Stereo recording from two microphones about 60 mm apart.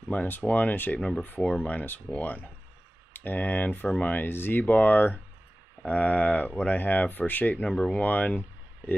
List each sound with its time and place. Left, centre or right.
0.1 s speech: left
7.6 s speech: centre
7.9 s speech: left